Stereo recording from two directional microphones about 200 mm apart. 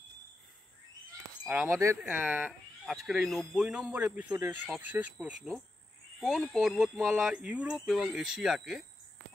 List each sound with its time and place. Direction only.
1.4 s a sound: 5° right (ahead or behind)
1.7 s speech: 15° right (ahead or behind)
4.2 s speech: 20° right (ahead or behind)
4.5 s speech: 10° right (ahead or behind)